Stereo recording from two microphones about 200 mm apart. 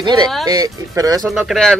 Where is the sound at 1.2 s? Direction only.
Centre (ahead or behind).